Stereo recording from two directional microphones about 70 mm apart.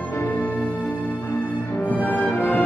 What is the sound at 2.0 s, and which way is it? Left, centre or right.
Music, left.